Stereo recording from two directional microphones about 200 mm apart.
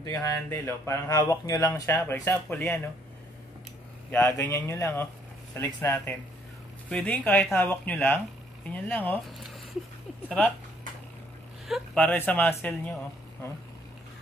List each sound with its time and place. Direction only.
0.0 s speech: 15° left (ahead or behind)
4.1 s speech: 15° left (ahead or behind)
11.6 s speech: centre (ahead or behind)